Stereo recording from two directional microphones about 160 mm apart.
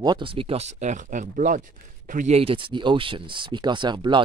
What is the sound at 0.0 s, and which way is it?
Speech, 30° right (ahead or behind).